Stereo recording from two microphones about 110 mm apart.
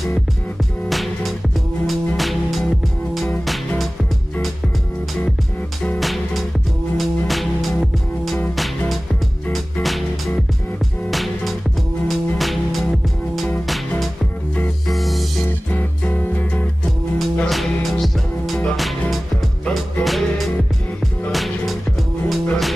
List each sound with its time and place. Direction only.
0.8 s music: centre (ahead or behind)
5.9 s music: centre (ahead or behind)
15.7 s music: 15° left (ahead or behind)
17.2 s music: centre (ahead or behind)
19.6 s music: centre (ahead or behind)